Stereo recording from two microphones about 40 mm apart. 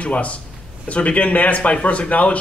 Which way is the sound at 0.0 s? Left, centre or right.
Left.